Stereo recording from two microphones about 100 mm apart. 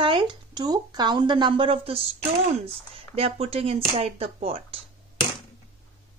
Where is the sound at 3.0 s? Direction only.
75° right (ahead or behind).